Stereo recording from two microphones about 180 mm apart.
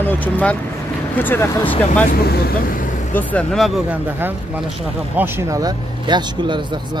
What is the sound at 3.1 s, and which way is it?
Speech, 10° left (ahead or behind).